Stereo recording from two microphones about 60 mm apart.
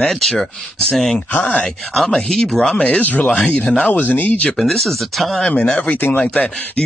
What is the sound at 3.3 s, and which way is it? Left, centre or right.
Speech, centre.